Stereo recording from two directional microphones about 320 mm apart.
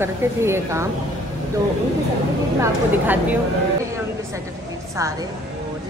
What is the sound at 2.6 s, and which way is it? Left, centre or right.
Speech, centre.